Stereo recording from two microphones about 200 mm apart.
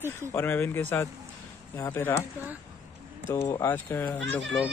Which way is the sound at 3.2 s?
15° left (ahead or behind).